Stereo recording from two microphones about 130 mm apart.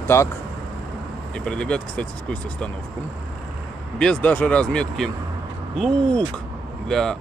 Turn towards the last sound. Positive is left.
turn(degrees=5)  # may be behind; listen again after turning